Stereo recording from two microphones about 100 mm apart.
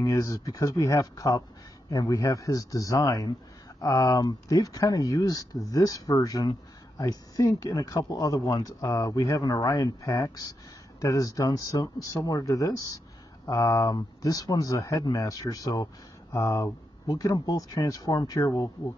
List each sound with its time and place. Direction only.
0.0 s speech: 35° left (ahead or behind)